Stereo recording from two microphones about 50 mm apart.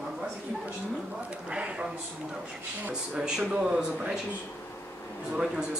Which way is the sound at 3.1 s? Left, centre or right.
Centre.